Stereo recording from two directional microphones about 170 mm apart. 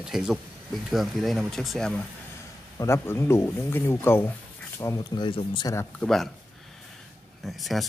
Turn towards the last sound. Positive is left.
turn(degrees=0)  # may be behind; listen again after turning